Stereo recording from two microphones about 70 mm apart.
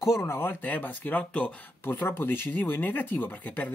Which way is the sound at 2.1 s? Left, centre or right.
Left.